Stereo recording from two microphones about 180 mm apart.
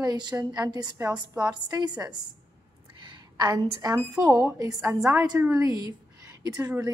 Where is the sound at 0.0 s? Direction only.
25° right (ahead or behind).